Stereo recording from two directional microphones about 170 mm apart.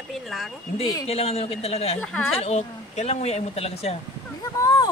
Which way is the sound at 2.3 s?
40° left (ahead or behind).